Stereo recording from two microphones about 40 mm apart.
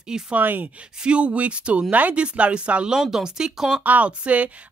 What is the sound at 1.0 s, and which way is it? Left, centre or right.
A woman's voice, right.